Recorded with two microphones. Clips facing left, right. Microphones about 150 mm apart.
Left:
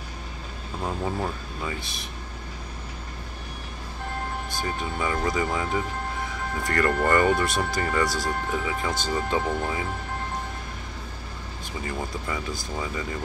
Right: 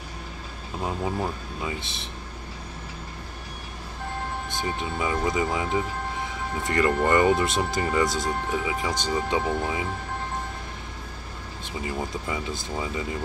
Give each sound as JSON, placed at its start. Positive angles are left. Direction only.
{"t": 0.8, "sound": "speech", "side_deg": -5}
{"t": 1.7, "sound": "speech", "side_deg": -25}
{"t": 4.5, "sound": "speech", "side_deg": -20}
{"t": 11.8, "sound": "speech", "side_deg": -10}